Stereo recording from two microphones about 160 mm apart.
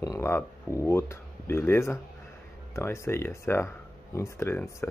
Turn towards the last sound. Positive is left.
turn(degrees=15)  # may be behind; listen again after turning